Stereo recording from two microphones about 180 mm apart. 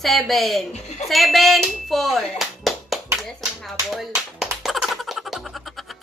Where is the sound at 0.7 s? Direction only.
35° left (ahead or behind).